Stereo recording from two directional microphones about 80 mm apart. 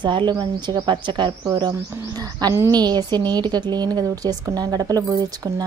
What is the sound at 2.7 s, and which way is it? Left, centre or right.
Speech, right.